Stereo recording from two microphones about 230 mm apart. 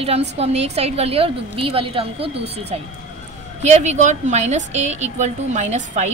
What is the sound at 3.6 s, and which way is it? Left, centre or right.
A woman's voice, right.